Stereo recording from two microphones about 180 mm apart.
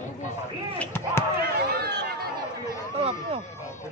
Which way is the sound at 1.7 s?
60° right (ahead or behind).